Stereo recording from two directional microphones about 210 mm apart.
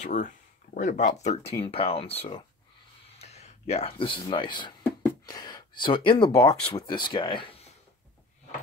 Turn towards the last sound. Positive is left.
turn(degrees=25)  # may be behind; listen again after turning